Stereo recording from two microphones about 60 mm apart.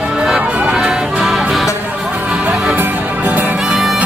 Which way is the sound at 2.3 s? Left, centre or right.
Right.